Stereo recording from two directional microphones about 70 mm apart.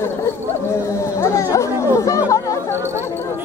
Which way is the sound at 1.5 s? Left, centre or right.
Left.